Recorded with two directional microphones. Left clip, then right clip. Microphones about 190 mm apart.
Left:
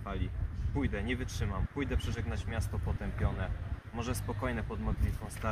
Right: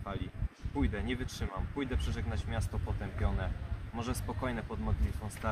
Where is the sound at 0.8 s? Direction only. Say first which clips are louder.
Even; 15° left (ahead or behind).